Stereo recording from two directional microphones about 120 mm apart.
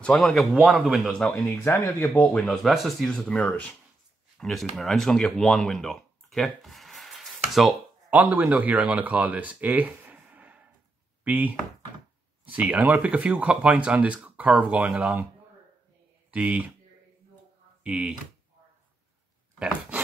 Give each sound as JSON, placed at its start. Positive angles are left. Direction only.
{"t": 0.0, "sound": "speech", "side_deg": 5}
{"t": 1.3, "sound": "speech", "side_deg": 20}
{"t": 2.3, "sound": "speech", "side_deg": 5}
{"t": 4.4, "sound": "speech", "side_deg": 0}
{"t": 8.1, "sound": "speech", "side_deg": -10}
{"t": 16.3, "sound": "speech", "side_deg": -10}
{"t": 17.8, "sound": "speech", "side_deg": -10}